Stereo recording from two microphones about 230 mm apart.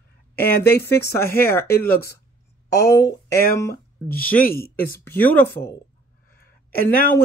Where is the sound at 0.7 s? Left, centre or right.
Centre.